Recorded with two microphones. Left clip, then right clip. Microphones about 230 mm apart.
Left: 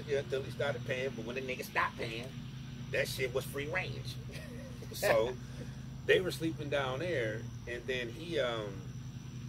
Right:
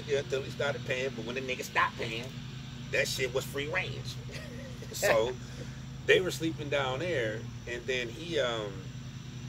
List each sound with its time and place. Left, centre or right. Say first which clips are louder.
0.1 s speech: right 3 dB; centre
5.0 s speech: right 3 dB; centre
6.0 s speech: right 4 dB; centre